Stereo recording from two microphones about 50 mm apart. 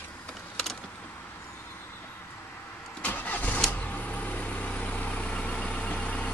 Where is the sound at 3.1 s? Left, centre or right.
Left.